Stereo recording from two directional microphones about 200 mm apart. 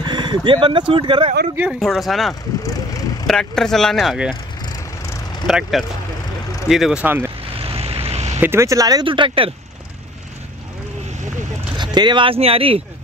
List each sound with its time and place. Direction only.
0.0 s speech: 25° right (ahead or behind)
1.6 s speech: centre (ahead or behind)
2.6 s chop: 15° left (ahead or behind)
3.3 s speech: centre (ahead or behind)
5.5 s speech: centre (ahead or behind)
7.5 s vehicle: 30° right (ahead or behind)
8.4 s speech: 10° right (ahead or behind)
11.7 s speech: 20° right (ahead or behind)